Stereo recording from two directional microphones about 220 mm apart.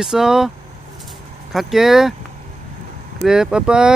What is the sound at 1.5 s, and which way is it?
Speech, centre (ahead or behind).